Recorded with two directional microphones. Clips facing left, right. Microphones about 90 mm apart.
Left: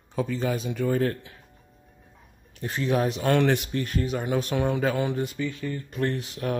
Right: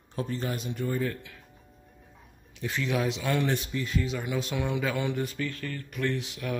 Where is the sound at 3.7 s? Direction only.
50° left (ahead or behind).